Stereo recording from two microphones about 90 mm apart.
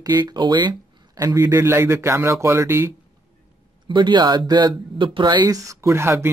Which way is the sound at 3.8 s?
60° right (ahead or behind).